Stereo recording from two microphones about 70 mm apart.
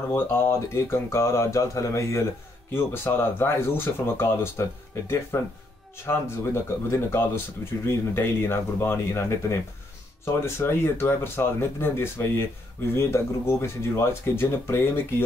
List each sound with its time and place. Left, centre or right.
0.1 s speech: left